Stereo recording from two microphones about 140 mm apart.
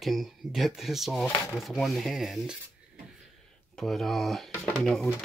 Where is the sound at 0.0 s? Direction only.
Centre (ahead or behind).